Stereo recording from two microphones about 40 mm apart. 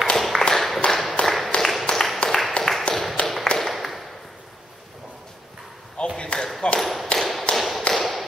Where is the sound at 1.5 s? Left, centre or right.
Left.